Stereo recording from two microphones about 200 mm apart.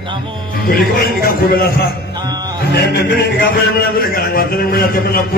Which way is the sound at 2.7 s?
55° left (ahead or behind).